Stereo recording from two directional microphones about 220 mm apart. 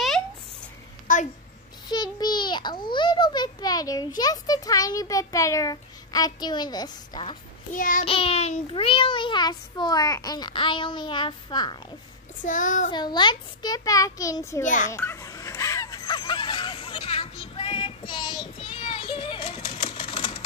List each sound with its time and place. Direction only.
1.1 s a sound: 35° left (ahead or behind)
1.9 s a child's voice: 20° left (ahead or behind)
7.7 s child singing: 35° left (ahead or behind)
8.0 s child singing: 25° left (ahead or behind)
12.4 s child singing: 35° left (ahead or behind)
12.9 s a child's voice: 20° left (ahead or behind)
14.6 s child singing: 35° left (ahead or behind)
14.9 s a sound: 10° left (ahead or behind)